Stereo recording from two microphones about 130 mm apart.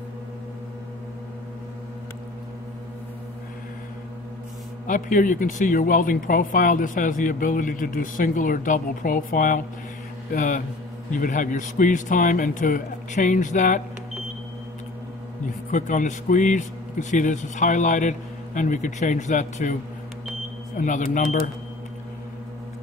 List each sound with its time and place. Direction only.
4.8 s speech: 90° left
10.3 s a man's voice: 80° left
15.7 s speech: 75° left (ahead or behind)